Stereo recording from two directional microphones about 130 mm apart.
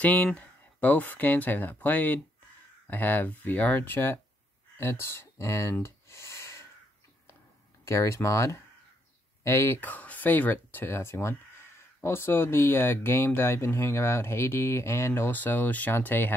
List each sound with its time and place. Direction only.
0.0 s speech: 10° left (ahead or behind)
4.7 s a sound: 20° left (ahead or behind)
7.8 s speech: 20° left (ahead or behind)